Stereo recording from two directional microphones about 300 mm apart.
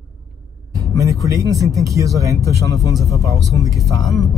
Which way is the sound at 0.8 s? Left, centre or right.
Centre.